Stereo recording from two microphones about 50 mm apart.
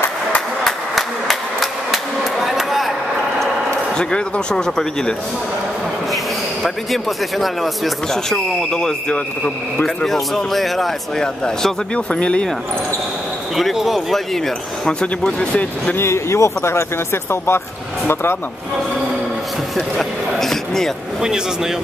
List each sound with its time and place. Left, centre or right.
0.7 s a sound: centre
3.9 s speech: centre
6.6 s speech: centre
8.1 s speech: centre
11.1 s speech: centre
13.6 s speech: centre
14.9 s speech: centre
16.0 s speech: left
20.0 s a man's voice: centre